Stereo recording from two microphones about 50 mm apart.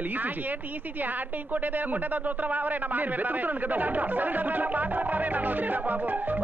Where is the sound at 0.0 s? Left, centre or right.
Right.